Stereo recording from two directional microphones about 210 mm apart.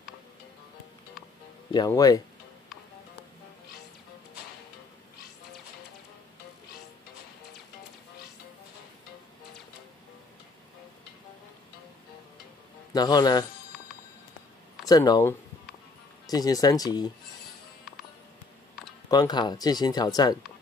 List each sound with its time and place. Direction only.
1.7 s speech: 20° left (ahead or behind)
12.9 s speech: 20° left (ahead or behind)
14.9 s speech: 15° left (ahead or behind)
19.0 s speech: 20° left (ahead or behind)